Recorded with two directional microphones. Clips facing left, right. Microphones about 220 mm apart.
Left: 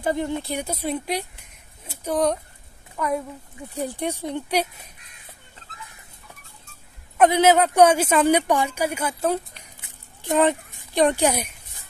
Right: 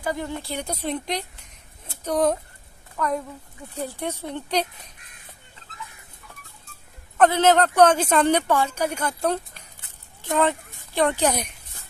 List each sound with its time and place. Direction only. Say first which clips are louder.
0.0 s speech: left 4 dB; 20° left (ahead or behind)
7.2 s speech: left 1 dB; 10° left (ahead or behind)
9.8 s a sound: left 3 dB; 15° left (ahead or behind)